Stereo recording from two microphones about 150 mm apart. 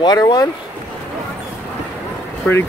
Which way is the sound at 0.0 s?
25° left (ahead or behind).